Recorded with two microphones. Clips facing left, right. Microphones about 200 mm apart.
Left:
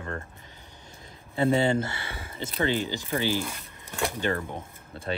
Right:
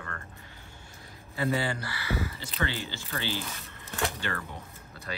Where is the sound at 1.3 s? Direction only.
25° left (ahead or behind).